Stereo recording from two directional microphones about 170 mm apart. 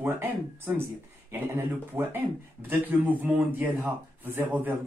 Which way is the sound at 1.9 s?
10° right (ahead or behind).